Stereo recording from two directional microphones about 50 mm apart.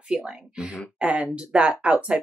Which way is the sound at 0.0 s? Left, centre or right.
Centre.